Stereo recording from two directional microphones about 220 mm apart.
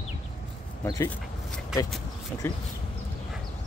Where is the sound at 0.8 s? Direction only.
15° left (ahead or behind).